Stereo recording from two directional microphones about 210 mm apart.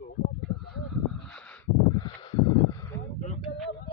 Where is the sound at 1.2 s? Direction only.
5° left (ahead or behind).